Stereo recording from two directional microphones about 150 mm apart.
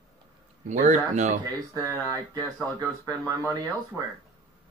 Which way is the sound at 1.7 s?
25° right (ahead or behind).